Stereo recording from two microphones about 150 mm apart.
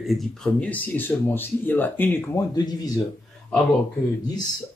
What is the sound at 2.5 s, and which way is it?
Speech, 25° left (ahead or behind).